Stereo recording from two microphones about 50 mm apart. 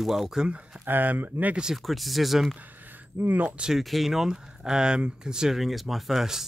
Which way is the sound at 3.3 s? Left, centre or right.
Right.